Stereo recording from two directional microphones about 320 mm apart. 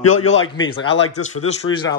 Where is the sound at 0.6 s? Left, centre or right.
Centre.